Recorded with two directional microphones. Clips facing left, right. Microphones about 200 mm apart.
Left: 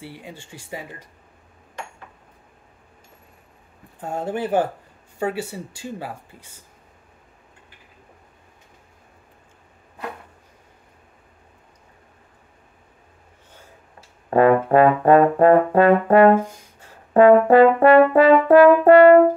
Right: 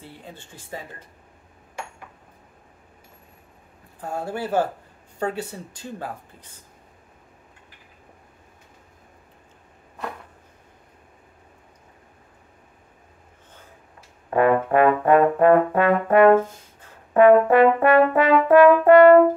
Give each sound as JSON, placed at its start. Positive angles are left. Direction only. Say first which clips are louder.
{"t": 0.0, "sound": "speech", "louder": "left 4 dB", "side_deg": 10}
{"t": 4.0, "sound": "speech", "louder": "left 3 dB", "side_deg": 20}
{"t": 14.3, "sound": "brass instrument", "louder": "left 3 dB", "side_deg": 30}
{"t": 16.3, "sound": "brass instrument", "louder": "right 2 dB", "side_deg": 10}
{"t": 17.1, "sound": "brass instrument", "louder": "left 2 dB", "side_deg": 30}